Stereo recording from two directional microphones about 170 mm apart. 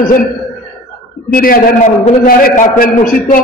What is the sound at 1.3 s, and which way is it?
A man's voice, 60° left (ahead or behind).